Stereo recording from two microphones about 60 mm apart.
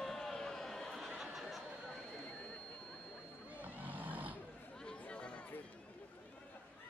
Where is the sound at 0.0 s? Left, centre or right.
Centre.